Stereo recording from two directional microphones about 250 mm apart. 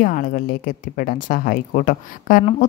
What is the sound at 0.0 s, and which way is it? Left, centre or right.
Speech, left.